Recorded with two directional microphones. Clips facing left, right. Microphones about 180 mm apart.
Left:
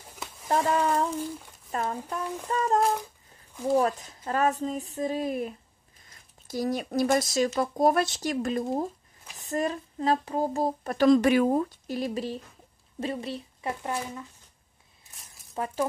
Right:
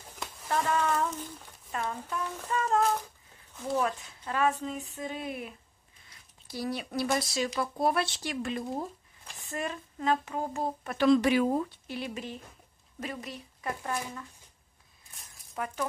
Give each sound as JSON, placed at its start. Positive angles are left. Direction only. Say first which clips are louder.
{"t": 0.1, "sound": "a sound", "louder": "even", "side_deg": 10}
{"t": 0.5, "sound": "speech", "louder": "left 4 dB", "side_deg": 35}
{"t": 15.5, "sound": "speech", "louder": "left 3 dB", "side_deg": 30}